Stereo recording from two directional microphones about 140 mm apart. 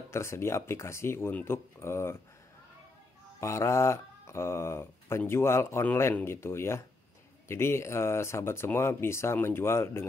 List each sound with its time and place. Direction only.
0.1 s speech: 20° left (ahead or behind)
3.3 s speech: 20° left (ahead or behind)